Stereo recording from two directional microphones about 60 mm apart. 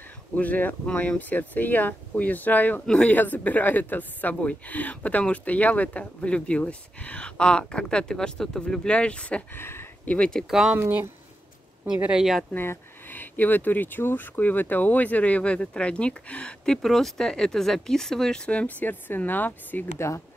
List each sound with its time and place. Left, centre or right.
0.4 s speech: left
9.5 s speech: left
10.0 s speech: left
10.7 s speech: right
12.1 s speech: centre
12.5 s speech: left